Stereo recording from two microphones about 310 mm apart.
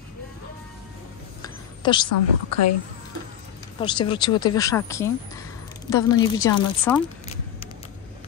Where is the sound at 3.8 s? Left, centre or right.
Centre.